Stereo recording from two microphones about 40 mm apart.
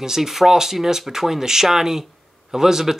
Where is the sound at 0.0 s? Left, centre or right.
Centre.